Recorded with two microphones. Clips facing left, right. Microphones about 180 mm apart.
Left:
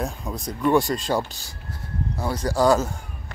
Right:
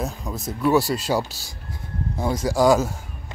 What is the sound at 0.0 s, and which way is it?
A man's voice, centre (ahead or behind).